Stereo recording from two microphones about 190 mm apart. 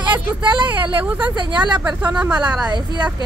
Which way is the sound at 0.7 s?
10° right (ahead or behind).